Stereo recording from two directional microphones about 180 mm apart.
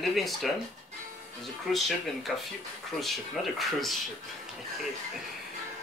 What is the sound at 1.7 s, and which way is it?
Speech, centre (ahead or behind).